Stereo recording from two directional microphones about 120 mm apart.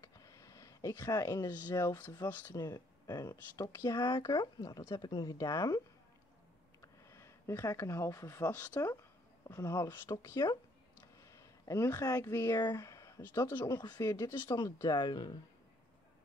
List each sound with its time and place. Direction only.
0.0 s a sound: 30° left (ahead or behind)
1.7 s speech: 25° left (ahead or behind)
2.6 s speech: 30° left (ahead or behind)
6.8 s a sound: 25° left (ahead or behind)
8.5 s speech: 10° left (ahead or behind)
8.7 s speech: 25° left (ahead or behind)